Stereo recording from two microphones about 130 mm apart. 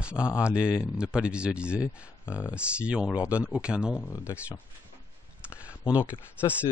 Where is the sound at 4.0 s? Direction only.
20° left (ahead or behind).